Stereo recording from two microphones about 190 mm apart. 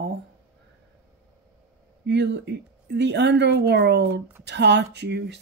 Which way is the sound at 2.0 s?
65° right (ahead or behind).